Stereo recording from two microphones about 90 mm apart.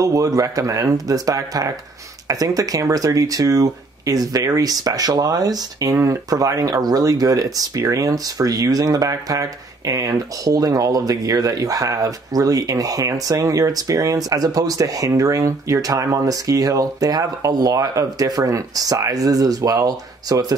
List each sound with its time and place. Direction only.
0.0 s speech: 40° right (ahead or behind)